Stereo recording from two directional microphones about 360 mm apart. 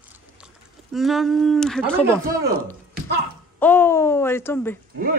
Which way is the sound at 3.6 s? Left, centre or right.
Centre.